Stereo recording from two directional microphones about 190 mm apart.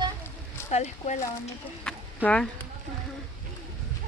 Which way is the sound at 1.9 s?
5° left (ahead or behind).